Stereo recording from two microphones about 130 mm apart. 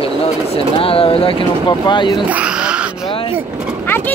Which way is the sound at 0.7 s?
45° left (ahead or behind).